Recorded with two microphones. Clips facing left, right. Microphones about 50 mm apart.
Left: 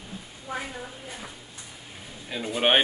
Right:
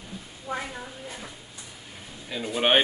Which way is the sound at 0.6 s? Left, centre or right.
Centre.